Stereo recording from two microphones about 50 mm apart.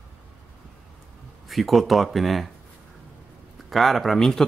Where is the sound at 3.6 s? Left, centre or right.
Centre.